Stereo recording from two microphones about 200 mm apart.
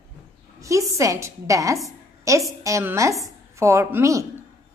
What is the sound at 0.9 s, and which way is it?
A woman's voice, 15° right (ahead or behind).